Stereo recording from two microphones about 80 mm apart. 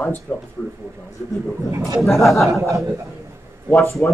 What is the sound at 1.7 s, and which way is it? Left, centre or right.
Speech, right.